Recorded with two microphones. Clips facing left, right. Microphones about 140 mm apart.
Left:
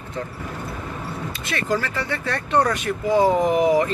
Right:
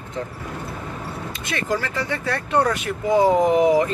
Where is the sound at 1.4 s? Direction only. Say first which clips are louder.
Left 1 dB; 20° right (ahead or behind).